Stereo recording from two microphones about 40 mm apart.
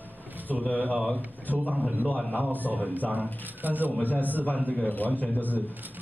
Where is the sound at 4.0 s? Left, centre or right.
Left.